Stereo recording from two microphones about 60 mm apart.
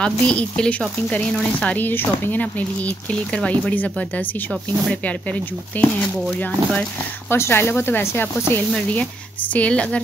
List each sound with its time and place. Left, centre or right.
0.0 s speech: centre; by 2.4 s left
3.1 s speech: left
5.7 s speech: left
7.2 s speech: left
9.5 s speech: left